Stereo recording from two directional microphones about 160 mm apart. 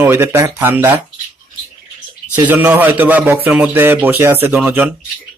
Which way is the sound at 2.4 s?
10° right (ahead or behind).